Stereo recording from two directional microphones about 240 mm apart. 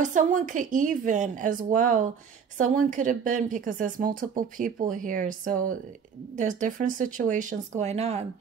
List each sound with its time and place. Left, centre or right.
0.0 s speech: right